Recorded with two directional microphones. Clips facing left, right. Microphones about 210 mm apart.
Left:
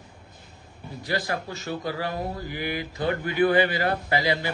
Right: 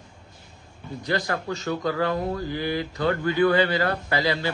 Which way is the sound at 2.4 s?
20° left (ahead or behind).